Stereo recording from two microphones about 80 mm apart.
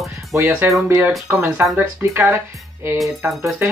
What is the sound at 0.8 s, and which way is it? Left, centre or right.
Speech, right.